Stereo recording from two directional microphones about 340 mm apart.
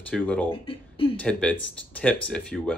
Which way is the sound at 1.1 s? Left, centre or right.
Centre.